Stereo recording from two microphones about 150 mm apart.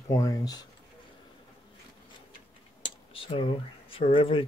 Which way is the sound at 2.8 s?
35° left (ahead or behind).